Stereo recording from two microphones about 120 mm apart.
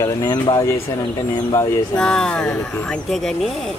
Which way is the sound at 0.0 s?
30° left (ahead or behind).